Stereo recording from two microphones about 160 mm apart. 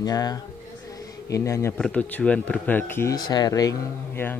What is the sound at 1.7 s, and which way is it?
Speech, 5° left (ahead or behind).